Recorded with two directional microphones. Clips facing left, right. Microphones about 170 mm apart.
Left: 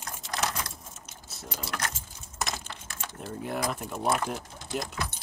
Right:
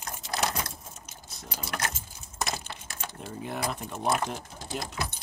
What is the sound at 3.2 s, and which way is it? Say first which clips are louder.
Speech: left 2 dB; centre (ahead or behind).